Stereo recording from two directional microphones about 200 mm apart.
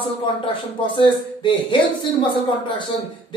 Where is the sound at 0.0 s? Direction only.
25° left (ahead or behind).